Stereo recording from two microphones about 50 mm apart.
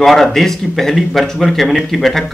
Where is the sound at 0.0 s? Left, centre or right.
Centre.